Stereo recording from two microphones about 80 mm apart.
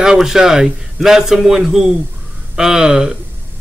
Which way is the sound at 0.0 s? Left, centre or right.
Centre.